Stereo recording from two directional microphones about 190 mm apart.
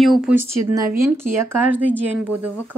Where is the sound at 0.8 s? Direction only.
15° right (ahead or behind).